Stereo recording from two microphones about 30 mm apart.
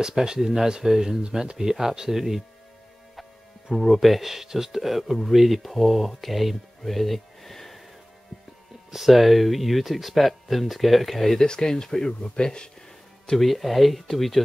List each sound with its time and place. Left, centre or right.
0.2 s speech: right
3.7 s speech: centre
8.9 s speech: centre
11.4 s speech: left
13.4 s speech: centre